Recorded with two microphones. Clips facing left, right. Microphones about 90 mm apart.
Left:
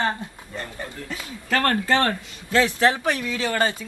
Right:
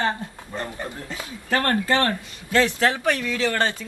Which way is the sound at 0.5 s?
20° right (ahead or behind).